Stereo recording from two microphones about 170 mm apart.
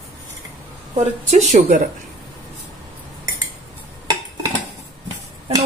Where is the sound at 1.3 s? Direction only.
45° right (ahead or behind).